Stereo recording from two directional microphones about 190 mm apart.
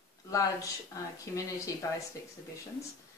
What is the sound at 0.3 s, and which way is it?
A woman's voice, 15° left (ahead or behind).